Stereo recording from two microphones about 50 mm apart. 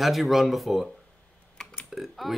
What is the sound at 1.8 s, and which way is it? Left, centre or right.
Burping, centre.